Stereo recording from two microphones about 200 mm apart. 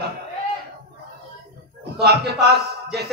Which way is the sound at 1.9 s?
55° right (ahead or behind).